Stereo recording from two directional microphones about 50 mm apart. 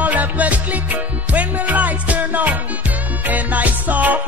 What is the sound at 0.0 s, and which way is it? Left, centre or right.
Music, right.